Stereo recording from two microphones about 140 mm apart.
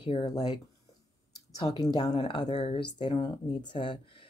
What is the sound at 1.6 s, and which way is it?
Speech, 30° left (ahead or behind).